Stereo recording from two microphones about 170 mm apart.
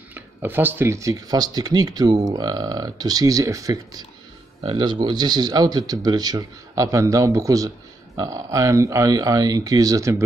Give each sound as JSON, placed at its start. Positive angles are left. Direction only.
{"t": 0.1, "sound": "speech", "side_deg": -10}